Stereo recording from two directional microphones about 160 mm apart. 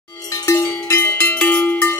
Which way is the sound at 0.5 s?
15° left (ahead or behind).